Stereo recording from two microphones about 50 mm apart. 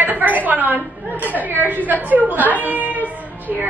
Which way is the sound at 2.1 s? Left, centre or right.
Right.